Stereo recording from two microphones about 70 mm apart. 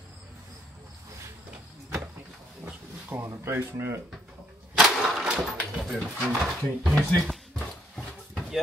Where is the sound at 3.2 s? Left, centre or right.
Right.